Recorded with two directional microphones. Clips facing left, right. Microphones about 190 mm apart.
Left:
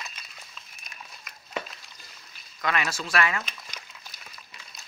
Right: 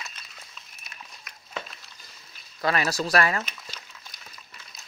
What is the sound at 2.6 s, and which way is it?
Speech, 35° right (ahead or behind).